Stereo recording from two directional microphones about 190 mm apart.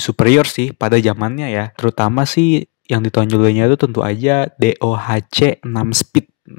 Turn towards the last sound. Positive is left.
turn(degrees=45)  # may be behind; listen again after turning